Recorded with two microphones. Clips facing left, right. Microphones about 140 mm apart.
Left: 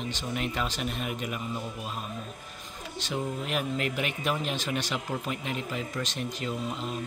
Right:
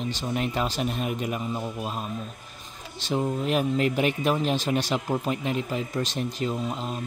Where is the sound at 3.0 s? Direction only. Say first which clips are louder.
Right 6 dB; 35° right (ahead or behind).